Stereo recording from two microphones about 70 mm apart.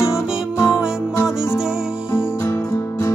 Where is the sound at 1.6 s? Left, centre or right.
Centre.